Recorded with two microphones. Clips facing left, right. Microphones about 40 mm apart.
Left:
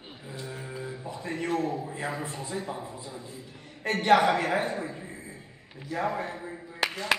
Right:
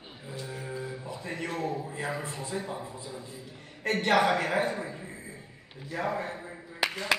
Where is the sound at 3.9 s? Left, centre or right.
Centre.